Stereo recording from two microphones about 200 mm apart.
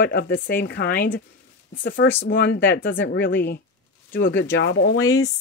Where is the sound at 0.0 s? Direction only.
55° left (ahead or behind).